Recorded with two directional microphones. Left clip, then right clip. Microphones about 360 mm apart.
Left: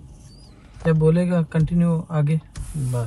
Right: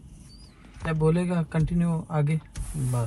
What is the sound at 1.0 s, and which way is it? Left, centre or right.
Speech, centre.